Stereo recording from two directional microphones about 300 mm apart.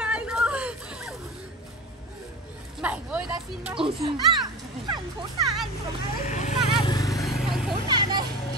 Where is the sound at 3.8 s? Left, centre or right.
Centre.